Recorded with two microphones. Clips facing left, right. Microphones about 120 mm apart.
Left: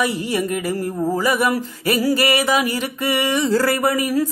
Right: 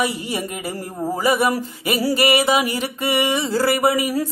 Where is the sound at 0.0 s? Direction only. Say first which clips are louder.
Left 2 dB; 20° right (ahead or behind).